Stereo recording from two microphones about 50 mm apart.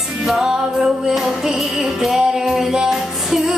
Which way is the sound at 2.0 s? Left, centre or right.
Centre.